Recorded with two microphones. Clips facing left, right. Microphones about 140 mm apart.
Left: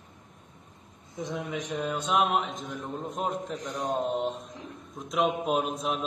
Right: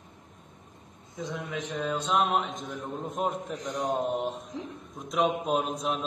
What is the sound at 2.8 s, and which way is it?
A man's voice, centre (ahead or behind).